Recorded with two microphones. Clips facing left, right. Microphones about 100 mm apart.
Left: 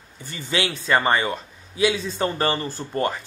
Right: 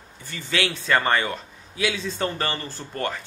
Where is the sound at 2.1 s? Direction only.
25° left (ahead or behind).